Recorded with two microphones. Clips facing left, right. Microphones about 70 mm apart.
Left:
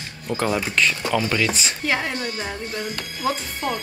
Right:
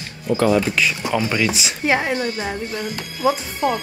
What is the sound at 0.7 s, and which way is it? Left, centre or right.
Speech, centre.